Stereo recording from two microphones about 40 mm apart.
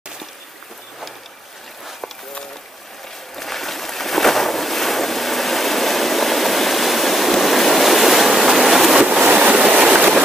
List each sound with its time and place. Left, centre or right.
3.3 s boat: centre
9.0 s waves: right
9.9 s train: right